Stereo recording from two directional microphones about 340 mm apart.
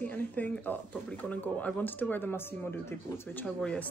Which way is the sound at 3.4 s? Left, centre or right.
Centre.